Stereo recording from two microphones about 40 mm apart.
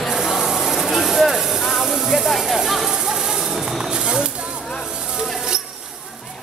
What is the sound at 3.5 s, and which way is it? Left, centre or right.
Tambourine, centre.